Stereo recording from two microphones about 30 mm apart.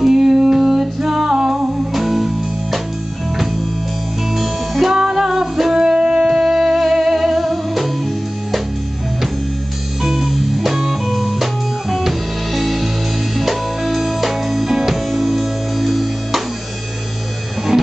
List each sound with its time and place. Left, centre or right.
0.0 s music: centre
2.0 s music: centre
4.4 s music: centre
4.9 s music: right; by 7.9 s centre
10.0 s music: centre